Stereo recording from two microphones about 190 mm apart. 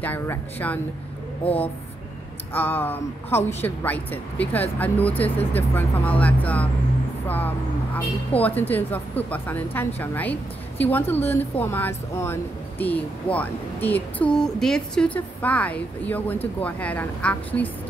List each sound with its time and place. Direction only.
0.0 s speech: 10° left (ahead or behind)
1.4 s speech: 30° left (ahead or behind)
2.5 s speech: 10° left (ahead or behind)